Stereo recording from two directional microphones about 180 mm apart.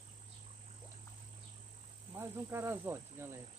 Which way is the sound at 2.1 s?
15° right (ahead or behind).